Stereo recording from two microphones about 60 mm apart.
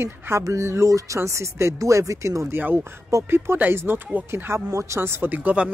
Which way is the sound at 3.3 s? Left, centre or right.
Right.